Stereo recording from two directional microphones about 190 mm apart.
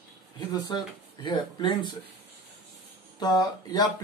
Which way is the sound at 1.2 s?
25° left (ahead or behind).